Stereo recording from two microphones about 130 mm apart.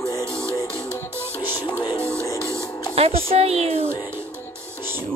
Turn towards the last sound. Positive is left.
turn(degrees=-50)  # may be behind; listen again after turning